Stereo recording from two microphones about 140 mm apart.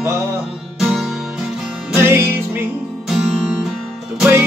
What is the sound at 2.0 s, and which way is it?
Music, 15° right (ahead or behind).